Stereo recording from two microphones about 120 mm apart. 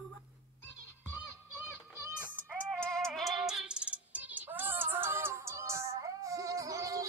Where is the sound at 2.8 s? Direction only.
5° left (ahead or behind).